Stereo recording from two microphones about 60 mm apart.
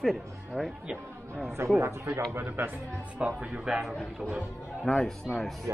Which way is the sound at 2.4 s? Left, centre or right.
Right.